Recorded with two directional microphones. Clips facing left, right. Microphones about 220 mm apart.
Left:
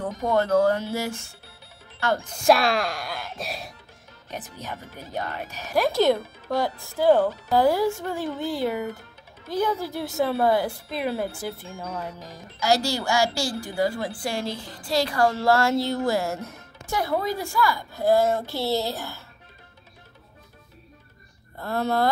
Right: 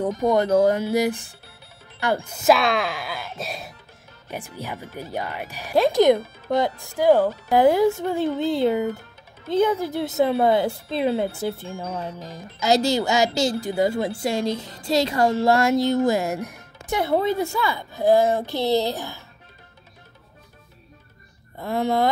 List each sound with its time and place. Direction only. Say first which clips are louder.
0.0 s a woman's voice: right 4 dB; 15° right (ahead or behind)
2.4 s speech: right 1 dB; centre (ahead or behind)
4.3 s a woman's voice: right 3 dB; 10° right (ahead or behind)
21.5 s a woman's voice: right 2 dB; 15° right (ahead or behind)